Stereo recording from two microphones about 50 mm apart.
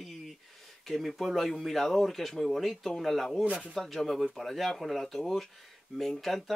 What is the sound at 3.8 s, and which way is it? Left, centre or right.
Speech, centre.